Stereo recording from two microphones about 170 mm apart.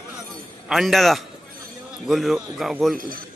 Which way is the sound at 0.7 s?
Centre (ahead or behind).